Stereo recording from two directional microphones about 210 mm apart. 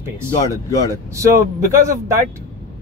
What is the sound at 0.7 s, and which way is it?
Speech, 15° left (ahead or behind).